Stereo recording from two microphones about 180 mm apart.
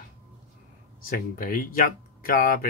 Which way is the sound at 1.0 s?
50° left (ahead or behind).